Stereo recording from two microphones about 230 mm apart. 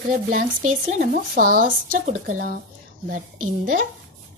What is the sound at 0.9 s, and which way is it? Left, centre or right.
Speech, right.